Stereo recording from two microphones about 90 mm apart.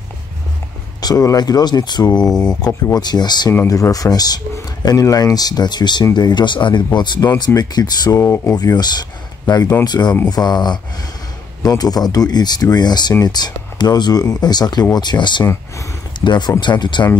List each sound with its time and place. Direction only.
1.0 s speech: 45° left (ahead or behind)
2.1 s speech: 5° left (ahead or behind)
2.9 s speech: 50° left (ahead or behind)
3.6 s speech: 40° left (ahead or behind)
8.2 s speech: 35° left (ahead or behind)
8.5 s speech: 50° left (ahead or behind)